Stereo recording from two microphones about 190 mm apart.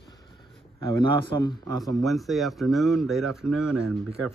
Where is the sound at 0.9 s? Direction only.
20° left (ahead or behind).